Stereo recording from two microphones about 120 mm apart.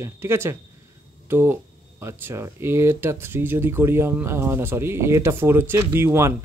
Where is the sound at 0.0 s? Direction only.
20° right (ahead or behind).